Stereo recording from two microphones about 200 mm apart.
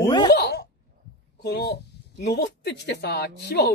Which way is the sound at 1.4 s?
55° left (ahead or behind).